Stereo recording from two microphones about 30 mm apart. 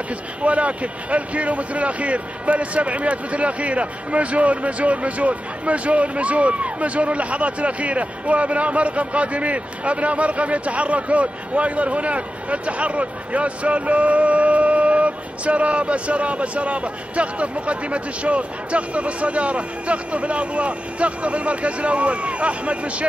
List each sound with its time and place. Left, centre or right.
0.4 s speech: right